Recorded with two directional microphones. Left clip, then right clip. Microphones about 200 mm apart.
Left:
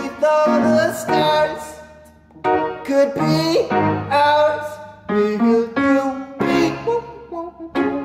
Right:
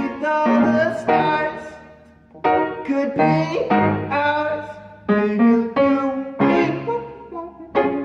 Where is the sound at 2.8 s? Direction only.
15° left (ahead or behind).